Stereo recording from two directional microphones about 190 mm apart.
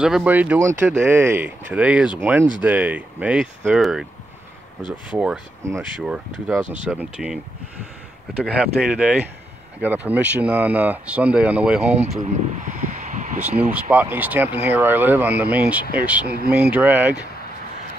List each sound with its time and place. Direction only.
0.0 s speech: 5° right (ahead or behind)
5.1 s speech: 5° right (ahead or behind)
8.5 s speech: 5° right (ahead or behind)
11.9 s speech: 35° right (ahead or behind)
13.6 s speech: 10° right (ahead or behind)